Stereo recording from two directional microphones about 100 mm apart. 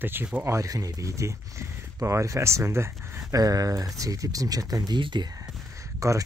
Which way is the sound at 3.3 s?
35° right (ahead or behind).